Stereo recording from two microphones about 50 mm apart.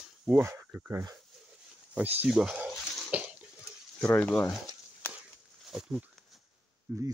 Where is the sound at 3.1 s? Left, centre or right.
Right.